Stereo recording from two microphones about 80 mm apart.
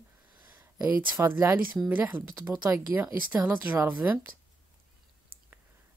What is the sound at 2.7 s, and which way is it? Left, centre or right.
Speech, right.